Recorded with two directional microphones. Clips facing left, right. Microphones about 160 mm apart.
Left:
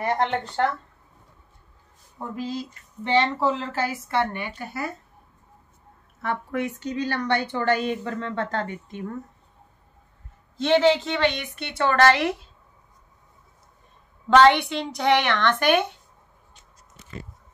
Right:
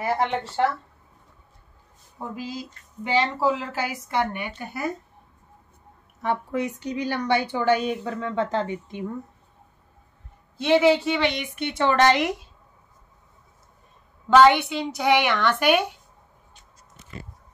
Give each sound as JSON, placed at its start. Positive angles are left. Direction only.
{"t": 0.0, "sound": "a woman's voice", "side_deg": -5}
{"t": 2.1, "sound": "a woman's voice", "side_deg": -5}
{"t": 6.2, "sound": "a woman's voice", "side_deg": -15}
{"t": 10.6, "sound": "a woman's voice", "side_deg": -5}
{"t": 14.3, "sound": "a woman's voice", "side_deg": -5}